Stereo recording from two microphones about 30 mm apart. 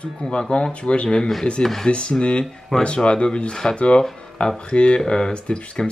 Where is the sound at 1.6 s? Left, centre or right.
Centre.